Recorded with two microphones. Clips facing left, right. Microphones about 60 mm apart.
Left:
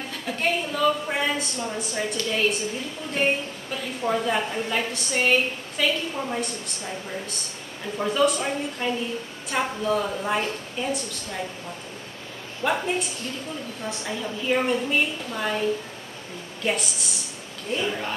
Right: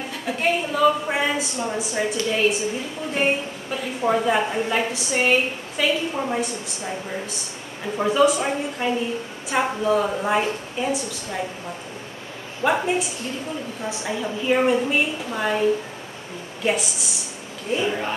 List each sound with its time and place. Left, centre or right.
0.3 s a woman's voice: centre
6.1 s a woman's voice: centre
12.6 s a woman's voice: centre